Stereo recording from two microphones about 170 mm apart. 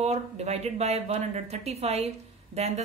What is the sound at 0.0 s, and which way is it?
A woman's voice, 40° right (ahead or behind).